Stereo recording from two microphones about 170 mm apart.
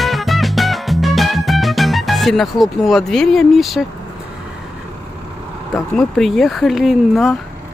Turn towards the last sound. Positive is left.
turn(degrees=0)  # may be behind; listen again after turning